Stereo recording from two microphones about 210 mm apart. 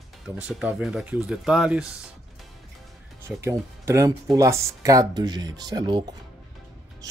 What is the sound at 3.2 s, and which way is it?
Speech, 15° right (ahead or behind).